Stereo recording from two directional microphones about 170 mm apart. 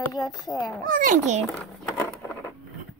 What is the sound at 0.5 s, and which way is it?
Speech, centre (ahead or behind).